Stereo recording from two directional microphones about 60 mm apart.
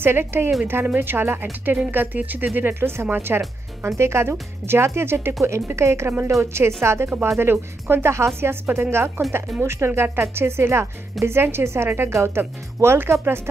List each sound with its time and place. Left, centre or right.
0.0 s speech: right